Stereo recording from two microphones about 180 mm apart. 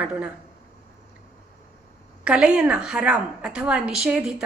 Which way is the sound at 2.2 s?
5° right (ahead or behind).